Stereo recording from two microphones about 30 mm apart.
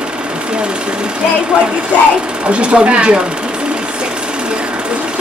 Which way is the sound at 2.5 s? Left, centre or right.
Right.